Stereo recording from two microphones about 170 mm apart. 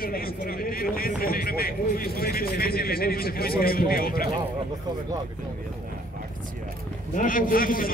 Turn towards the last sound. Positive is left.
turn(degrees=55)  # may be behind; listen again after turning